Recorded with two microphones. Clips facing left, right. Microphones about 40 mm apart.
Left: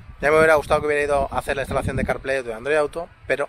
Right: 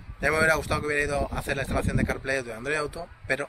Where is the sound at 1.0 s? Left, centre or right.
Left.